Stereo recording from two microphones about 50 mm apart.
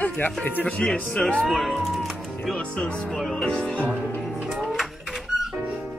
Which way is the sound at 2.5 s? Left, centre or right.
Centre.